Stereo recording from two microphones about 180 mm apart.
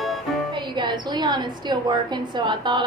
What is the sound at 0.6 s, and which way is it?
A woman's voice, 25° right (ahead or behind).